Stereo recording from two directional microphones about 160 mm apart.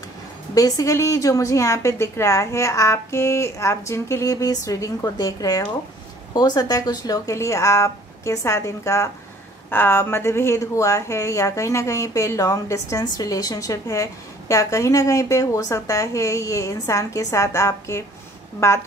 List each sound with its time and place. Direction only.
0.6 s a woman's voice: 20° left (ahead or behind)